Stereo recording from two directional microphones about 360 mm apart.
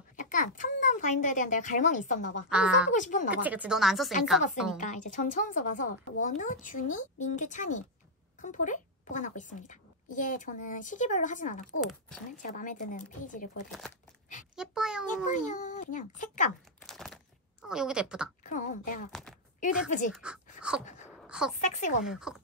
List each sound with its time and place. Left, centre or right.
0.1 s a child's voice: left
2.5 s speech: centre
2.9 s speech: left
3.3 s speech: centre
4.7 s a woman's voice: left
11.8 s speech: centre
12.3 s speech: left
14.5 s a sound: centre
15.2 s speech: centre
16.8 s a sound: centre
18.4 s speech: left
20.1 s speech: centre
21.5 s speech: centre
22.0 s speech: centre